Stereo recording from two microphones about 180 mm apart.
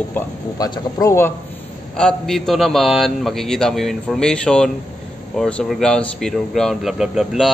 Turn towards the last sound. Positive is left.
turn(degrees=0)  # may be behind; listen again after turning